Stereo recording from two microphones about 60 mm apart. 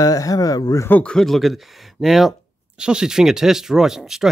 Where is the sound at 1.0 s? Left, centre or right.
Centre.